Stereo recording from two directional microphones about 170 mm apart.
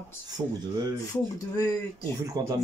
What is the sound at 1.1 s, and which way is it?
Speech, 20° left (ahead or behind).